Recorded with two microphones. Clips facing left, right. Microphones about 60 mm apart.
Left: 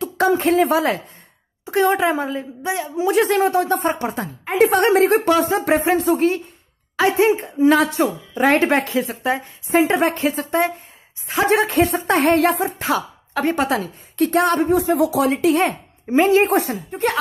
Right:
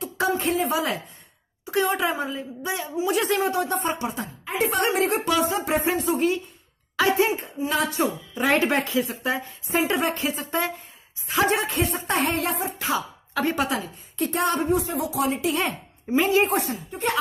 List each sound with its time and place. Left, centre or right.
0.4 s speech: left
1.7 s speech: left
4.6 s speech: left
12.7 s speech: left
15.0 s speech: left
15.5 s a woman's voice: left
16.4 s speech: left